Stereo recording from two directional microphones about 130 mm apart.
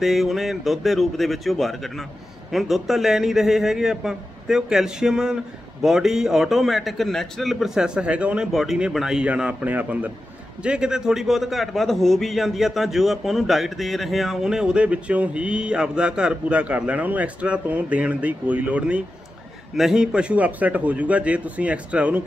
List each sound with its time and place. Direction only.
0.0 s a man's voice: centre (ahead or behind)